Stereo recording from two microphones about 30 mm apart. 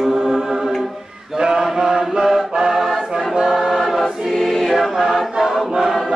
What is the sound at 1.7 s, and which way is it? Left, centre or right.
Chant, right.